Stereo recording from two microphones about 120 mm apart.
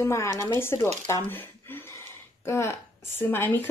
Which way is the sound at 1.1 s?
15° left (ahead or behind).